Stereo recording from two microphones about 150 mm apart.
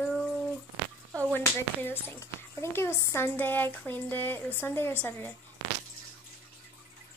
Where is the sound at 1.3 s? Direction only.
15° left (ahead or behind).